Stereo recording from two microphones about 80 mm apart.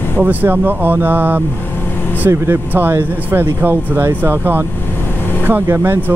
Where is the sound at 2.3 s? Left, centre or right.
Right.